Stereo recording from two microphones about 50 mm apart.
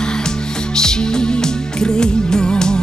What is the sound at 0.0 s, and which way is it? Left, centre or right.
Music, centre.